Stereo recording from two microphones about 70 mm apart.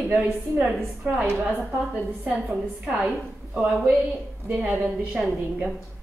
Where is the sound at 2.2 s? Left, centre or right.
Centre.